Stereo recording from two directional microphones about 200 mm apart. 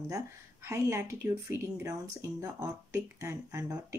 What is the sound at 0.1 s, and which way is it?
Speech, 15° right (ahead or behind).